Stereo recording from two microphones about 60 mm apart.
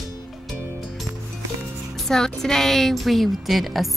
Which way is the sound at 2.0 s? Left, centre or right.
Centre.